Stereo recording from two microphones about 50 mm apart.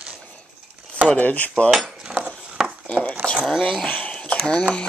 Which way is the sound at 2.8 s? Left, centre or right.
Left.